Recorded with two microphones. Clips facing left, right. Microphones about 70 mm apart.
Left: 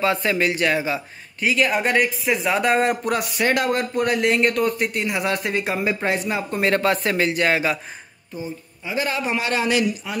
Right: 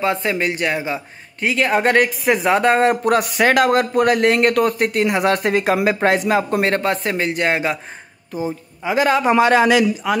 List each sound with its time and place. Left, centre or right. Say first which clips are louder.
0.0 s speech: right 1 dB; right
1.5 s speech: right 4 dB; right
3.3 s a man's voice: right 5 dB; right
6.0 s speech: right 7 dB; right
6.8 s speech: even; centre
7.1 s speech: right 1 dB; right
8.8 s a man's voice: right 8 dB; right